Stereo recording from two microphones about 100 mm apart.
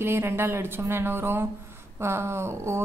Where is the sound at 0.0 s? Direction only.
25° right (ahead or behind).